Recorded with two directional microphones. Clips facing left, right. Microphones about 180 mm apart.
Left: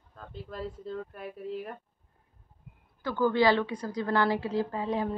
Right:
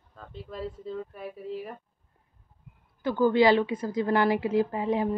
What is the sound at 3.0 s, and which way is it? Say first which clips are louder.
A woman's voice: right 3 dB; 15° right (ahead or behind).